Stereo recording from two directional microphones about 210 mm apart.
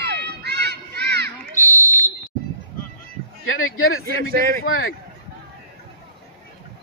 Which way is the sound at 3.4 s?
75° left (ahead or behind).